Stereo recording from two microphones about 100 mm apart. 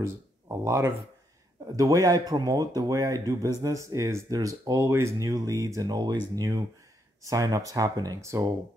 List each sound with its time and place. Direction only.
0.0 s speech: 30° right (ahead or behind)